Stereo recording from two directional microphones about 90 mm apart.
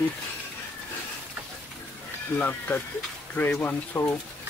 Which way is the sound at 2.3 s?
20° left (ahead or behind).